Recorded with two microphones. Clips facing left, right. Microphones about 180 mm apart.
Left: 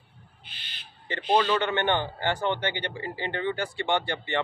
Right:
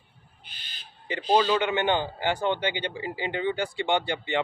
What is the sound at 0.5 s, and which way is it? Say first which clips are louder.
Owl: even; 45° right (ahead or behind).